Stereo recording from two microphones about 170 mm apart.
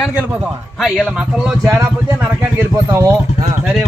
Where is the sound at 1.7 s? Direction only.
15° right (ahead or behind).